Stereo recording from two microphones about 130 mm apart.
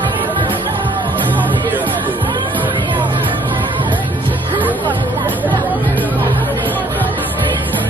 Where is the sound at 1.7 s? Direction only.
15° right (ahead or behind).